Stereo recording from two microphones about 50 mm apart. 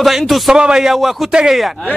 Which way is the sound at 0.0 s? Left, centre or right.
Centre.